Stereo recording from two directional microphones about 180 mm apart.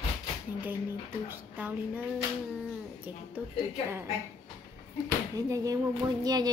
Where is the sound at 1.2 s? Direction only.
10° right (ahead or behind).